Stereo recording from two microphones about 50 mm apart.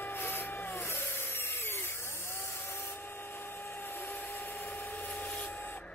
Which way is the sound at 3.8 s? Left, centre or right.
Left.